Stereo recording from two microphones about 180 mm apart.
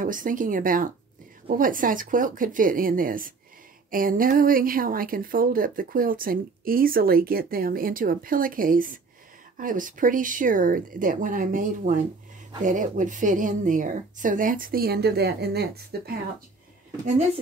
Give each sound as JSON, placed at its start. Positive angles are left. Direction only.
{"t": 0.0, "sound": "speech", "side_deg": -50}